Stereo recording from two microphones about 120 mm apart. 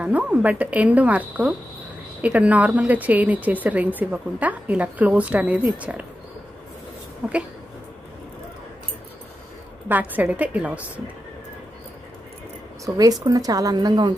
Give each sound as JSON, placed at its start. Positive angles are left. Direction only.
{"t": 0.0, "sound": "a woman's voice", "side_deg": -10}
{"t": 7.2, "sound": "speech", "side_deg": -5}
{"t": 9.8, "sound": "a woman's voice", "side_deg": -15}
{"t": 12.8, "sound": "a woman's voice", "side_deg": -30}